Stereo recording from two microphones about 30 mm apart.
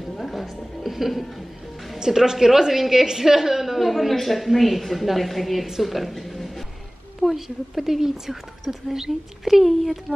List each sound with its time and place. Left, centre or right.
0.2 s a sound: centre
2.0 s a woman's voice: centre
3.8 s speech: centre
7.4 s a woman's voice: centre